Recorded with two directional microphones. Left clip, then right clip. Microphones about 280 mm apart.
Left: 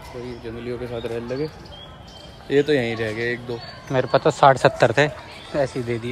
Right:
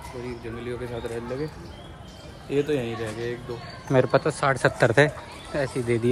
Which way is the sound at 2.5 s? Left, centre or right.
Left.